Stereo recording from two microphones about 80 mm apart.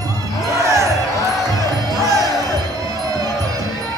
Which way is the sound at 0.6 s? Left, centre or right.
Right.